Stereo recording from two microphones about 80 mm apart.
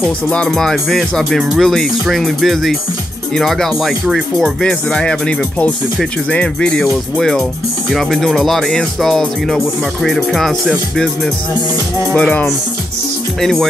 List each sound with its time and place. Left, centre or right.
0.0 s speech: centre
12.1 s speech: centre